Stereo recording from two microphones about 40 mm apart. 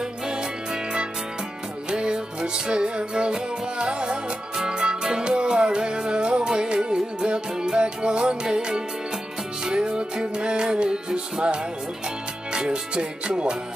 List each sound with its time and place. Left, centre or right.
1.9 s music: centre